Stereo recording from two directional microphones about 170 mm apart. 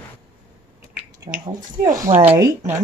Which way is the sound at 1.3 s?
25° right (ahead or behind).